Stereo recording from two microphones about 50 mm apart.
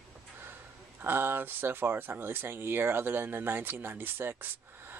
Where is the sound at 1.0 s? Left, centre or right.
Right.